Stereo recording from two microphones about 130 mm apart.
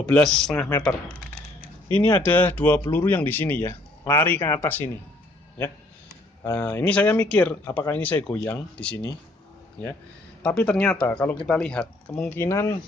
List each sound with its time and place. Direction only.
0.0 s speech: 5° left (ahead or behind)
0.6 s speech: 25° left (ahead or behind)
2.0 s speech: 15° left (ahead or behind)
4.6 s speech: 15° left (ahead or behind)
6.4 s speech: 20° left (ahead or behind)
10.4 s speech: 10° left (ahead or behind)
12.4 s speech: 25° left (ahead or behind)